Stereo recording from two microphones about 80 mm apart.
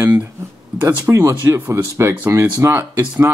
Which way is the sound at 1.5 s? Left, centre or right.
Right.